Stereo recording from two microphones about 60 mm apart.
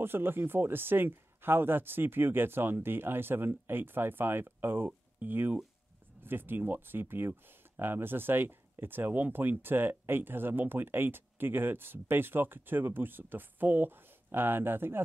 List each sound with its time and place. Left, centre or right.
0.0 s speech: right